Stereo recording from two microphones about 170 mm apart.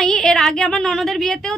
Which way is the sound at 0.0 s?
5° left (ahead or behind).